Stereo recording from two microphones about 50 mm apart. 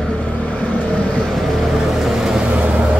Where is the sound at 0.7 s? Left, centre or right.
Centre.